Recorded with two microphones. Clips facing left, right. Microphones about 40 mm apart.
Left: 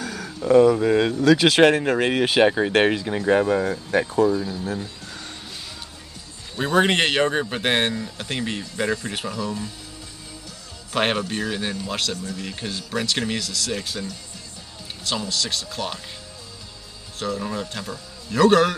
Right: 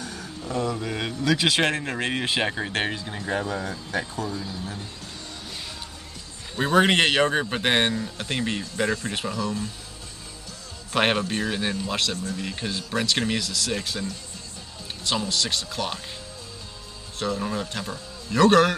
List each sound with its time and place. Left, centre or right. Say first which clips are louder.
0.0 s a sound: left 5 dB; left
0.5 s speech: left 13 dB; left
1.1 s speech: left 2 dB; left
1.8 s speech: left 7 dB; centre
2.7 s speech: left 8 dB; left
3.4 s speech: left 8 dB; left
6.6 s speech: even; centre
10.9 s speech: even; centre
15.0 s speech: even; centre
17.2 s speech: even; centre